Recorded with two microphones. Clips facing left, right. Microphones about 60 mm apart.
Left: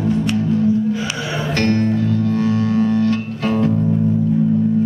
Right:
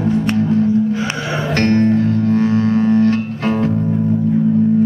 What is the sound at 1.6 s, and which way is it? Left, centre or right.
Music, right.